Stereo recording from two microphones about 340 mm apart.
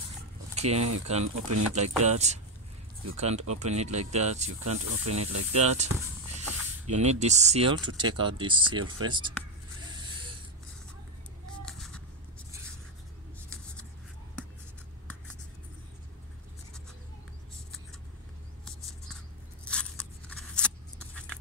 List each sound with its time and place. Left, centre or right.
0.6 s speech: centre
1.3 s speech: right
1.8 s speech: centre
4.5 s speech: right
5.6 s speech: centre
6.9 s speech: centre
11.6 s a sound: centre
19.6 s scissors: centre